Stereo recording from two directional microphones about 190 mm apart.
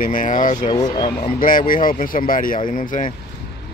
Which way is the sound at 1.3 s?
45° left (ahead or behind).